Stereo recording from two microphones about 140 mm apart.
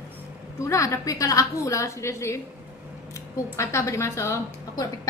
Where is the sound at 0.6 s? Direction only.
20° left (ahead or behind).